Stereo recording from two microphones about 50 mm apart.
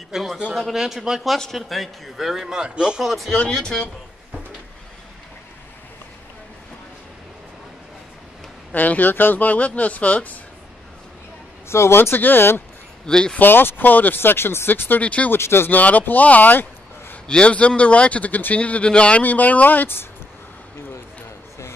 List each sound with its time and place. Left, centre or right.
0.1 s a man's voice: centre
3.0 s speech: centre
3.3 s speech: centre
8.7 s speech: left
11.7 s speech: left
12.0 s speech: left
13.0 s speech: centre
13.4 s speech: left
14.7 s speech: left
15.0 s speech: left
15.3 s speech: left
15.7 s speech: left
17.3 s speech: left
19.2 s speech: left